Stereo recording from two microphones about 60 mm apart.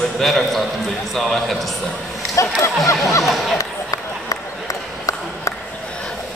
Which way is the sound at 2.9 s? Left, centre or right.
Left.